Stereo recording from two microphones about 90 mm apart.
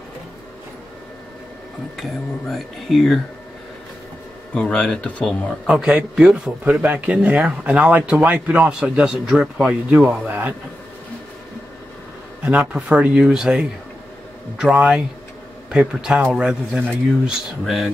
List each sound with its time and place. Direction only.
2.0 s speech: centre (ahead or behind)
4.6 s speech: 10° left (ahead or behind)
5.7 s a man's voice: 15° right (ahead or behind)
9.7 s a man's voice: 15° right (ahead or behind)
12.4 s a man's voice: 15° right (ahead or behind)